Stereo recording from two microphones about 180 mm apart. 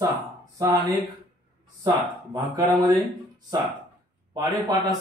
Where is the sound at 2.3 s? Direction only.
20° right (ahead or behind).